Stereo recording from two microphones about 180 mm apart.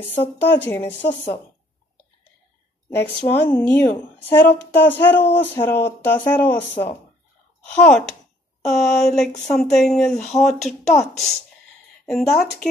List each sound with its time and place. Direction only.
0.1 s a woman's voice: 10° left (ahead or behind)
0.7 s a woman's voice: 30° left (ahead or behind)
3.3 s a woman's voice: 10° left (ahead or behind)
7.6 s speech: 5° left (ahead or behind)